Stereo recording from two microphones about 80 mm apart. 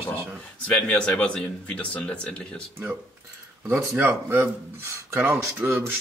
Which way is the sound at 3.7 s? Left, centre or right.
Right.